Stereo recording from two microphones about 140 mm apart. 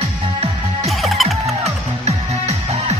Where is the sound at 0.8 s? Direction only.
Centre (ahead or behind).